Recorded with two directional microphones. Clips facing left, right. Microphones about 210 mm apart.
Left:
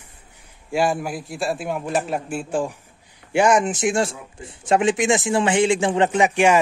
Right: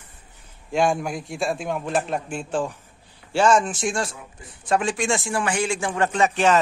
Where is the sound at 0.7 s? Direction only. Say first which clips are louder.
Even; 5° left (ahead or behind).